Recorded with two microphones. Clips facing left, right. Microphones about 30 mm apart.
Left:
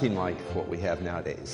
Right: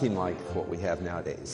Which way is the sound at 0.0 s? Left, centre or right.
Left.